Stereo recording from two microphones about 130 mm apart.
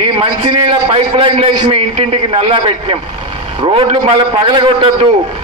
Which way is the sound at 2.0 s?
50° right (ahead or behind).